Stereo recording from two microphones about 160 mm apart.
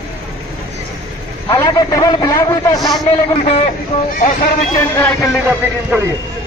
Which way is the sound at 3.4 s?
40° left (ahead or behind).